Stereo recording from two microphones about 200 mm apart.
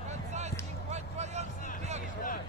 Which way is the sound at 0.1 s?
35° right (ahead or behind).